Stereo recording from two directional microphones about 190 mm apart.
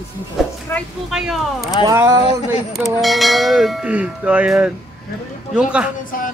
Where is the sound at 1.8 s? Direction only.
20° right (ahead or behind).